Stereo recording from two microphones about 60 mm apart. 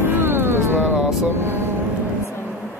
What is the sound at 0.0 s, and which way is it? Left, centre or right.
Vehicle, right.